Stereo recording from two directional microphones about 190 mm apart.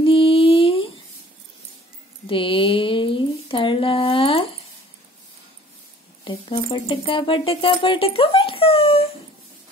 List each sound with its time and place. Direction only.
0.0 s a sound: 30° left (ahead or behind)
2.2 s speech: 25° left (ahead or behind)
6.2 s speech: 25° left (ahead or behind)